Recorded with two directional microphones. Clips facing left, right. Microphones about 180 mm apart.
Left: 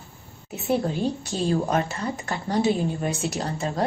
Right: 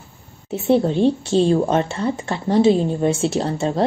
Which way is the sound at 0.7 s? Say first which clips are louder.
Right 8 dB; 30° right (ahead or behind).